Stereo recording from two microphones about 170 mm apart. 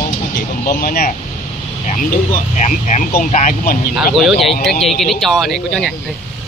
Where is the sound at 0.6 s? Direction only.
60° left (ahead or behind).